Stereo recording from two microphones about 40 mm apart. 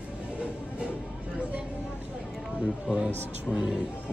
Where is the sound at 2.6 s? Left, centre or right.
Centre.